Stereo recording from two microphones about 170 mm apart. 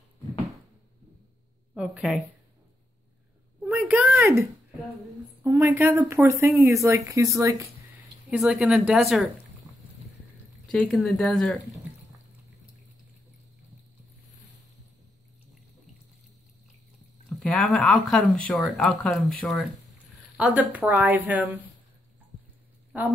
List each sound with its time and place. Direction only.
1.7 s speech: 5° right (ahead or behind)
3.6 s a woman's voice: 10° right (ahead or behind)
8.3 s speech: 5° right (ahead or behind)
10.7 s speech: centre (ahead or behind)
17.3 s a woman's voice: centre (ahead or behind)
22.9 s a woman's voice: 10° right (ahead or behind)